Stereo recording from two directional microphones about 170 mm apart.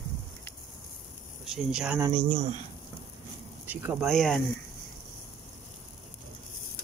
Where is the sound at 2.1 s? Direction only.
40° right (ahead or behind).